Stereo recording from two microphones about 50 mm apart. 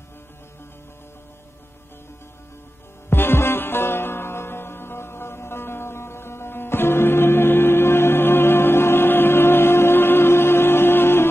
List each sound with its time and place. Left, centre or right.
3.1 s music: left